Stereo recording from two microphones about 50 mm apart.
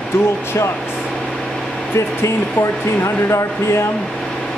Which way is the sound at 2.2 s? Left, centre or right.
Left.